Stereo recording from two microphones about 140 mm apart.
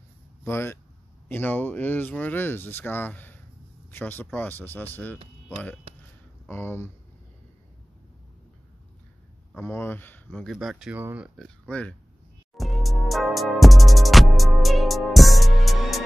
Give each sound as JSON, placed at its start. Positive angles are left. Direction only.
{"t": 0.4, "sound": "speech", "side_deg": 15}
{"t": 5.9, "sound": "a sound", "side_deg": -40}
{"t": 6.4, "sound": "speech", "side_deg": 15}
{"t": 9.6, "sound": "speech", "side_deg": 15}
{"t": 11.0, "sound": "speech", "side_deg": -10}
{"t": 11.3, "sound": "speech", "side_deg": 5}
{"t": 12.5, "sound": "music", "side_deg": 0}